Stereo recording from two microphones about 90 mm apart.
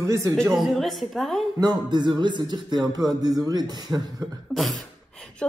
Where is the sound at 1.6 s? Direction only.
50° right (ahead or behind).